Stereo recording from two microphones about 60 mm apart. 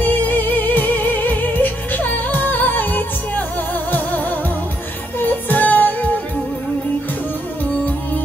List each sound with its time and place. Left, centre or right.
0.0 s music: left